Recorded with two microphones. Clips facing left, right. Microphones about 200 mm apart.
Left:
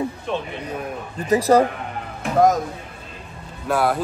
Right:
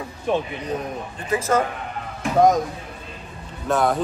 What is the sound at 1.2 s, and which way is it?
Speech, 40° left (ahead or behind).